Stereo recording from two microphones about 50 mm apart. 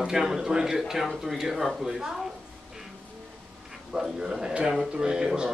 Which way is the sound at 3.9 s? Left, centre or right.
Centre.